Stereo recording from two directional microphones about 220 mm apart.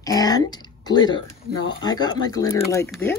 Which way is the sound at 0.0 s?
15° left (ahead or behind).